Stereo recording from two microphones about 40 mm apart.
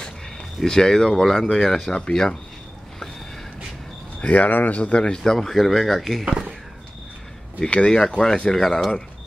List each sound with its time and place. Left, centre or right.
0.7 s speech: centre
4.3 s speech: left
5.0 s speech: left
5.3 s speech: centre
7.6 s speech: left